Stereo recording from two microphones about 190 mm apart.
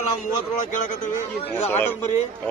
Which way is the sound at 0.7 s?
40° left (ahead or behind).